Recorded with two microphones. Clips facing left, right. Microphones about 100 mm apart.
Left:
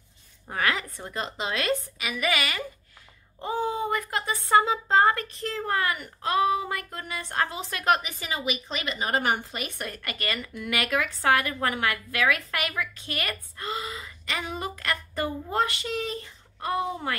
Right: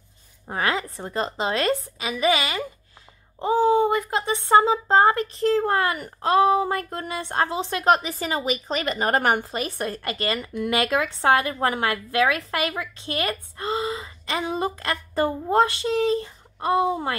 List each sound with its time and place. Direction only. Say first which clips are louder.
0.5 s a woman's voice: right 3 dB; 30° right (ahead or behind); by 9.5 s 50° right (ahead or behind)
9.5 s speech: right 7 dB; 35° right (ahead or behind)